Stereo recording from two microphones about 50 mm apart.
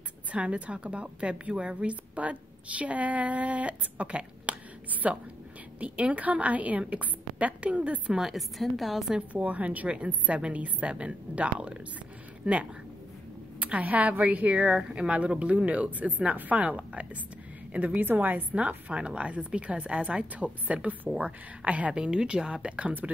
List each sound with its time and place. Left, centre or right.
0.3 s a woman's voice: right
8.1 s a woman's voice: centre
9.3 s a woman's voice: right
14.8 s a woman's voice: centre